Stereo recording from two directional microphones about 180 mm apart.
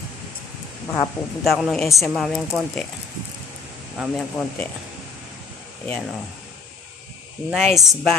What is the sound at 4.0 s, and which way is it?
Speech, centre (ahead or behind).